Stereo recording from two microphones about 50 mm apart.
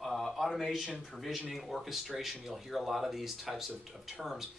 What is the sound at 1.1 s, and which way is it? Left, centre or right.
Speech, centre.